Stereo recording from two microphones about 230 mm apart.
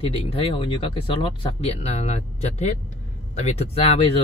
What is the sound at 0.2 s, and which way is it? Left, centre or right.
Speech, left.